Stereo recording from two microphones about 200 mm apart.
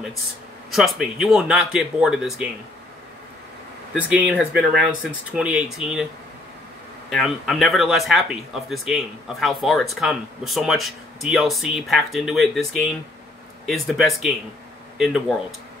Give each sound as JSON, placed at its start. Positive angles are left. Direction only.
{"t": 0.7, "sound": "speech", "side_deg": 0}
{"t": 3.9, "sound": "speech", "side_deg": -5}
{"t": 7.1, "sound": "speech", "side_deg": 0}